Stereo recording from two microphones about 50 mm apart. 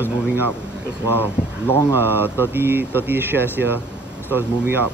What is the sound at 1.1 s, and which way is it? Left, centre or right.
Speech, left.